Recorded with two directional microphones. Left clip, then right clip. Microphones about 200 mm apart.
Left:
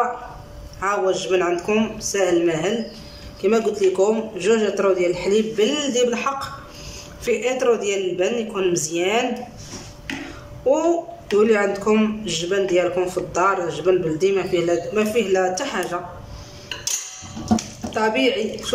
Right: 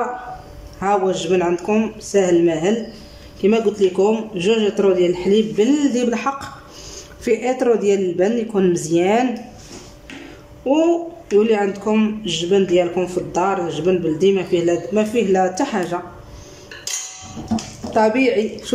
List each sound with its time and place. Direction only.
0.7 s a man's voice: 20° right (ahead or behind)
10.7 s a man's voice: 10° right (ahead or behind)
17.9 s speech: 20° right (ahead or behind)